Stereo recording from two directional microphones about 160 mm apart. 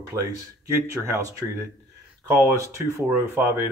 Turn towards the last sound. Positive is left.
turn(degrees=-15)  # may be behind; listen again after turning